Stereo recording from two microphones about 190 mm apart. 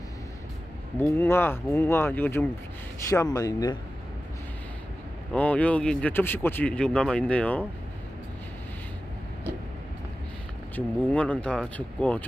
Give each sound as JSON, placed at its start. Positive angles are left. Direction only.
{"t": 0.9, "sound": "speech", "side_deg": 10}
{"t": 5.3, "sound": "speech", "side_deg": 5}
{"t": 11.0, "sound": "speech", "side_deg": 5}